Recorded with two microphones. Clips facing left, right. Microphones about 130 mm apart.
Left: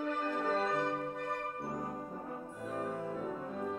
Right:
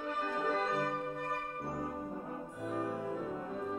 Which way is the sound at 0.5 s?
5° right (ahead or behind).